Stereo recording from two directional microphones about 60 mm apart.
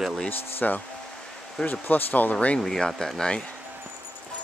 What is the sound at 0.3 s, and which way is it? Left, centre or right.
Speech, left.